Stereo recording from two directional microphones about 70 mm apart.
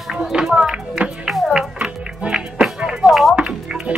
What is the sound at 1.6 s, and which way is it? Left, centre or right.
Music, centre.